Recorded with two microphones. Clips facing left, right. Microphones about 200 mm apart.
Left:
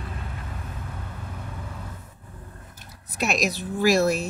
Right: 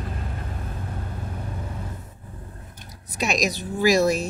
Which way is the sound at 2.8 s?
Centre (ahead or behind).